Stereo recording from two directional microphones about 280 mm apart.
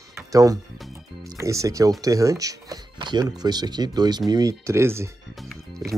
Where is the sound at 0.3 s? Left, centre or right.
Centre.